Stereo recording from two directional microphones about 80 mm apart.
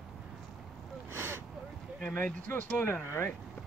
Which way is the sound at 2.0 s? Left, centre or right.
Centre.